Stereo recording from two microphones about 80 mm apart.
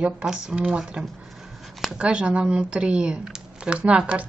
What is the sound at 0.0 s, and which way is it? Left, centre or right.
A woman's voice, centre.